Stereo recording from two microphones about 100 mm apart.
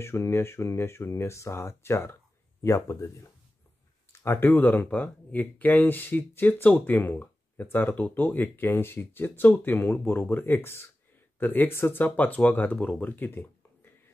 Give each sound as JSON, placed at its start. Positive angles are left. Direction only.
{"t": 0.0, "sound": "speech", "side_deg": 25}
{"t": 4.2, "sound": "speech", "side_deg": 20}